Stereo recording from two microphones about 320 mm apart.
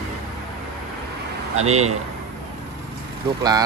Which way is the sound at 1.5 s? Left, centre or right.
Right.